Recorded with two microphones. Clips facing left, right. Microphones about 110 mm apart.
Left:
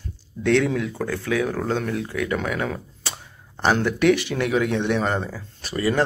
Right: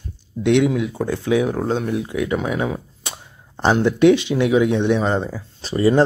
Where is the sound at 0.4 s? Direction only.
15° right (ahead or behind).